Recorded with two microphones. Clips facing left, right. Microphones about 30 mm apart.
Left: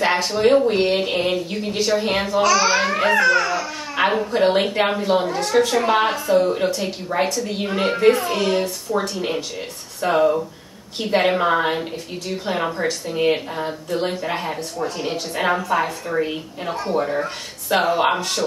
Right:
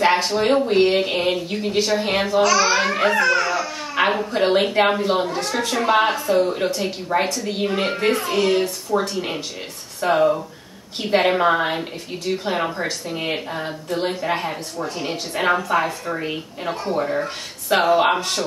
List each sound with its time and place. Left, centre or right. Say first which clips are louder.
0.0 s speech: even; centre